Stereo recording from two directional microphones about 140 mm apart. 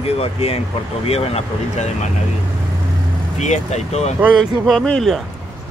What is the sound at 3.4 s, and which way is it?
Speech, 55° left (ahead or behind).